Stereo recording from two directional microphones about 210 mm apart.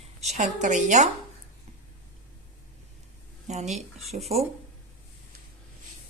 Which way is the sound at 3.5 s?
35° right (ahead or behind).